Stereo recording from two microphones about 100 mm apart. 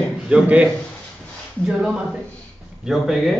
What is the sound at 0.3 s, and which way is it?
Speech, 10° right (ahead or behind).